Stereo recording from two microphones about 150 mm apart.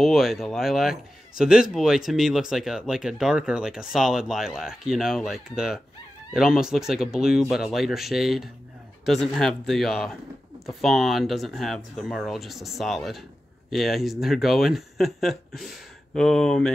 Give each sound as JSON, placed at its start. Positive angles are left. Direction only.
{"t": 0.0, "sound": "speech", "side_deg": 0}